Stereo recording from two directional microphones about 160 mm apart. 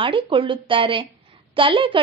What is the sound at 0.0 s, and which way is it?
A woman's voice, 35° right (ahead or behind).